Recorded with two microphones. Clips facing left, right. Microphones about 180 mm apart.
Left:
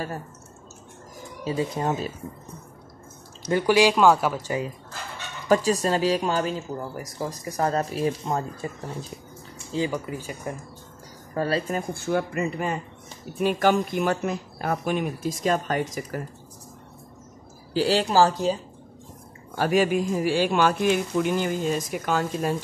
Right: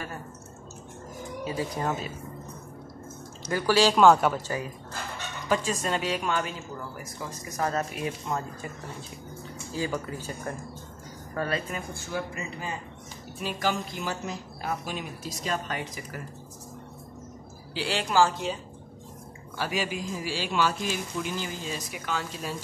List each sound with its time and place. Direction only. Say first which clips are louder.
1.4 s speech: left 4 dB; 25° left (ahead or behind)
3.4 s speech: left 4 dB; 20° left (ahead or behind)
3.9 s a woman's voice: even; 5° left (ahead or behind)
5.5 s speech: left 6 dB; 35° left (ahead or behind)
9.8 s speech: left 2 dB; 15° left (ahead or behind)
11.3 s speech: left 5 dB; 35° left (ahead or behind)
17.7 s speech: left 5 dB; 40° left (ahead or behind)
19.5 s speech: left 9 dB; 50° left (ahead or behind)